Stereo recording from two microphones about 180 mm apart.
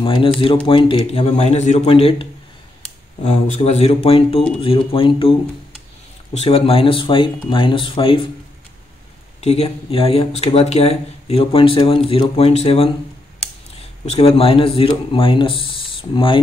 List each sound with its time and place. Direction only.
0.0 s speech: 30° left (ahead or behind)
3.3 s speech: 40° left (ahead or behind)
6.3 s speech: 35° left (ahead or behind)
9.4 s speech: 35° left (ahead or behind)